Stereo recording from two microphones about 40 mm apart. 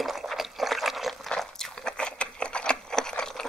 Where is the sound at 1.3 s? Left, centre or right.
Centre.